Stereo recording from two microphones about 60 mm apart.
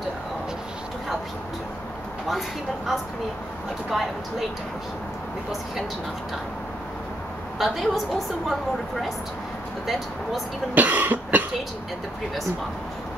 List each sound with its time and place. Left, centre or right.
3.9 s a woman's voice: centre
7.5 s a woman's voice: centre
10.7 s speech: right